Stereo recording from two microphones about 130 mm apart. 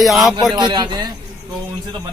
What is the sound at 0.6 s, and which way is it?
Speech, 35° right (ahead or behind).